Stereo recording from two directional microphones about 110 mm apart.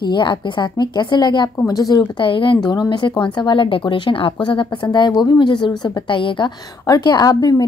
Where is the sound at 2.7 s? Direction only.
40° left (ahead or behind).